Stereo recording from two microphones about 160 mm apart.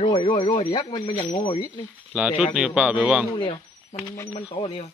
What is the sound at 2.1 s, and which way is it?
A man's voice, 5° right (ahead or behind).